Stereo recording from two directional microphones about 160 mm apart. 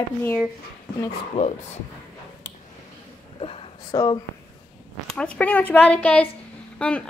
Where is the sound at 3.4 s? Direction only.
35° left (ahead or behind).